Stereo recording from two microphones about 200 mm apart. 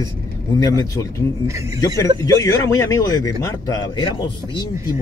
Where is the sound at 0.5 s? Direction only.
15° left (ahead or behind).